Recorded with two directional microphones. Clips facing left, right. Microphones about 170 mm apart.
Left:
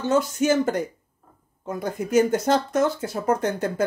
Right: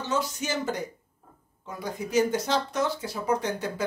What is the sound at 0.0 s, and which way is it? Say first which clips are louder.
Speech: left 8 dB; 50° left (ahead or behind).